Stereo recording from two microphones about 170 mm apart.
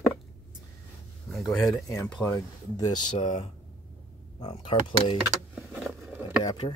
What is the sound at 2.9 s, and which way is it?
Speech, 25° left (ahead or behind).